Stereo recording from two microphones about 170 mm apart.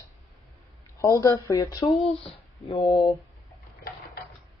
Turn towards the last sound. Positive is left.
turn(degrees=35)  # may be behind; listen again after turning